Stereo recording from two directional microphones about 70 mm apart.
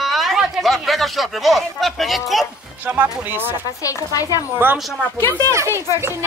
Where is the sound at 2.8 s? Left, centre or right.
Right.